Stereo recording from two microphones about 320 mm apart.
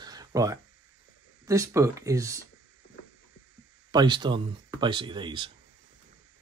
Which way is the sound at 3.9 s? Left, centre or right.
Centre.